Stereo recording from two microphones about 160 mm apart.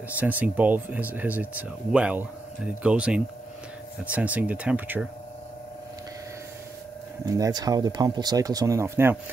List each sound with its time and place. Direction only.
0.2 s speech: 10° right (ahead or behind)
7.2 s speech: 20° right (ahead or behind)